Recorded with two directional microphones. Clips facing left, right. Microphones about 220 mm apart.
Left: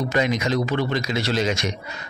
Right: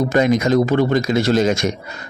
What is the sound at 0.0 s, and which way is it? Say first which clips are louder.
A man's voice: right 7 dB; 50° right (ahead or behind).